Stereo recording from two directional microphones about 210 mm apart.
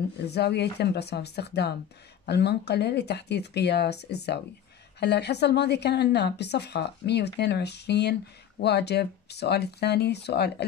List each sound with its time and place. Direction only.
0.2 s a woman's voice: 50° left (ahead or behind)